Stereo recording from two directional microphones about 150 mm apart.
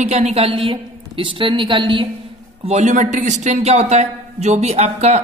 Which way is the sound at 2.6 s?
50° right (ahead or behind).